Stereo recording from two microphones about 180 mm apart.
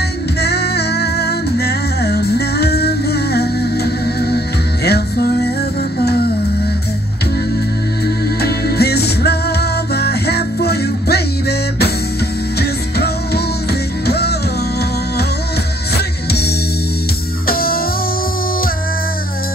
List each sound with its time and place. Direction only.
0.4 s music: 65° left (ahead or behind)
8.4 s music: 60° left (ahead or behind)
16.3 s music: 60° left (ahead or behind)